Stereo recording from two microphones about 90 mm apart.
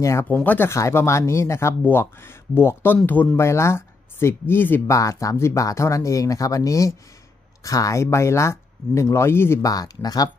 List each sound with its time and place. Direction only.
0.0 s speech: 30° left (ahead or behind)
0.7 s speech: 35° left (ahead or behind)
4.8 s speech: 35° left (ahead or behind)
9.6 s speech: 45° left (ahead or behind)